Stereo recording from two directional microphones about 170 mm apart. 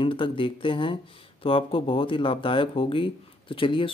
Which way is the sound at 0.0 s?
30° left (ahead or behind).